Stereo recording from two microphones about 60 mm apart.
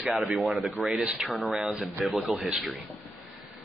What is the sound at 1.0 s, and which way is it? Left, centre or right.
Speech, right.